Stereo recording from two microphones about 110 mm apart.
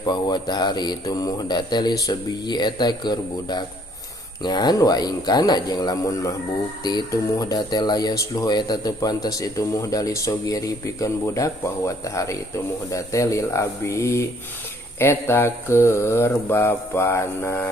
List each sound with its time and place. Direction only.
0.0 s speech: 40° left (ahead or behind)
12.9 s mantra: 30° left (ahead or behind)